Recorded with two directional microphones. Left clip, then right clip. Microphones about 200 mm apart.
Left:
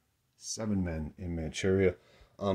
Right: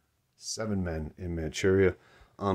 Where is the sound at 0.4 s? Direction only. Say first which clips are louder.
Right 2 dB; 10° right (ahead or behind).